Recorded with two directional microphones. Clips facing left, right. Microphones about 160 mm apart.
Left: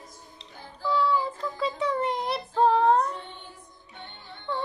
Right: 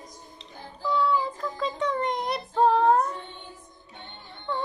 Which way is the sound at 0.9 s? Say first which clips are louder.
Even; centre (ahead or behind).